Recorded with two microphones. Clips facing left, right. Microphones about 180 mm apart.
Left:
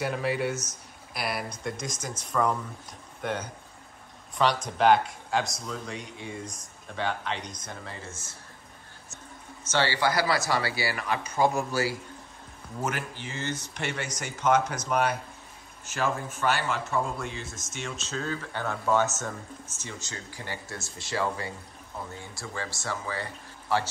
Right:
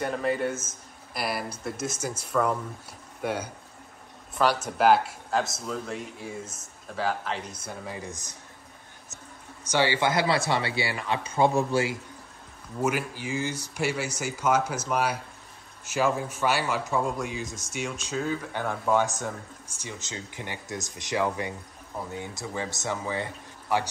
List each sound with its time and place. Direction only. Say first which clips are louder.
0.0 s speech: right 1 dB; 5° left (ahead or behind); by 8.4 s 15° right (ahead or behind)
9.7 s speech: right 2 dB; 15° right (ahead or behind)
12.8 s a man's voice: right 5 dB; 10° right (ahead or behind)
16.3 s a man's voice: right 1 dB; 5° right (ahead or behind)